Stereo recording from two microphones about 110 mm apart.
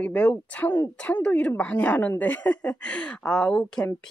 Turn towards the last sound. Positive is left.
turn(degrees=10)  # may be behind; listen again after turning